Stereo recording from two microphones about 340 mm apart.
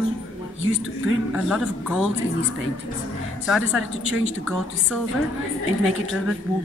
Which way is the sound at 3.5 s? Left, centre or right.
Centre.